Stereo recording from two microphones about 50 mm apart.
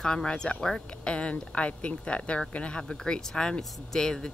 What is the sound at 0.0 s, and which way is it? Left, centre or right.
A woman's voice, centre.